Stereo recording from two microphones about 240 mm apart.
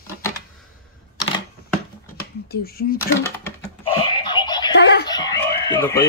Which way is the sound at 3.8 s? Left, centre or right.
Left.